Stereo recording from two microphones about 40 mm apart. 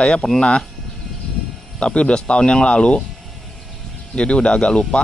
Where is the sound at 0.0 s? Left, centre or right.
Left.